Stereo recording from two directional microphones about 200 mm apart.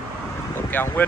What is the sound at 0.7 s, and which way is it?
Speech, 10° left (ahead or behind).